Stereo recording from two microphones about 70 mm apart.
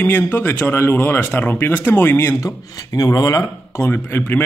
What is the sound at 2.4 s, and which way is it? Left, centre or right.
Speech, left.